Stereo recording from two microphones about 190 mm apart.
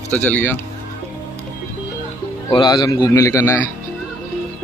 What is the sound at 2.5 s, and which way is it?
A man's voice, 20° left (ahead or behind).